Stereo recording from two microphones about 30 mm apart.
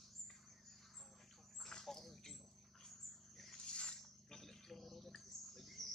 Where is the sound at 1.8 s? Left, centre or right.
Centre.